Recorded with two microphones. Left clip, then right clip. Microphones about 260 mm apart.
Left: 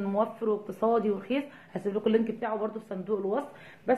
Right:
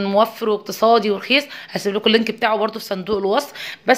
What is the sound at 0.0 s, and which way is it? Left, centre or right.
Speech, right.